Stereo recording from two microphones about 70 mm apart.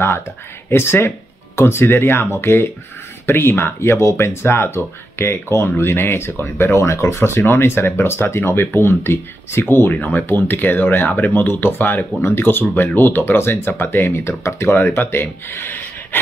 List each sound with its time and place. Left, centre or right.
0.7 s speech: left